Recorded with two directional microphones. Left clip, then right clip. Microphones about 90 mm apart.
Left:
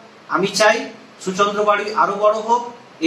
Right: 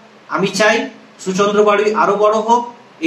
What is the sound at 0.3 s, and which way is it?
A man's voice, 30° right (ahead or behind).